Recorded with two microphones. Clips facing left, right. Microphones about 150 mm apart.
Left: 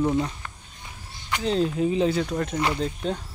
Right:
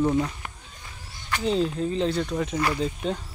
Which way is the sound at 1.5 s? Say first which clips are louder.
Left 2 dB; centre (ahead or behind).